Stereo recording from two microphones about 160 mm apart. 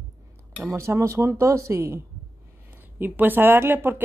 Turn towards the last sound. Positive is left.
turn(degrees=-15)  # may be behind; listen again after turning